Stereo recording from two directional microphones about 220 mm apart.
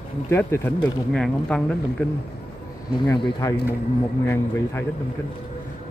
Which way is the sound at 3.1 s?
15° left (ahead or behind).